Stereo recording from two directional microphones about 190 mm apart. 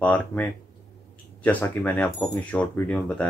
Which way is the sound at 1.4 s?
10° left (ahead or behind).